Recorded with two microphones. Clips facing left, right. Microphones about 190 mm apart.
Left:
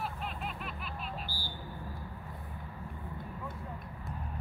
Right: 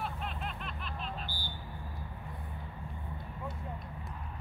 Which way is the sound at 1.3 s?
20° right (ahead or behind).